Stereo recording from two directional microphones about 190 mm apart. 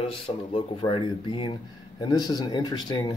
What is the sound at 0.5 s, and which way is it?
Speech, 30° left (ahead or behind).